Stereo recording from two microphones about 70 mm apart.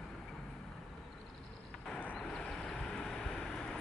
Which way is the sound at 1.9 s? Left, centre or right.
Centre.